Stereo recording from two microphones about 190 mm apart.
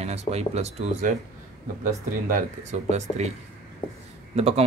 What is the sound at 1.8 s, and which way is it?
Speech, 45° right (ahead or behind).